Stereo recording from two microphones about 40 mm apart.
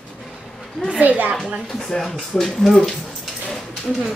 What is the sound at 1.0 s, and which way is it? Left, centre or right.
Speech, right.